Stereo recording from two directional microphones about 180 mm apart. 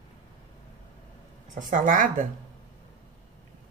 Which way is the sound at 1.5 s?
45° right (ahead or behind).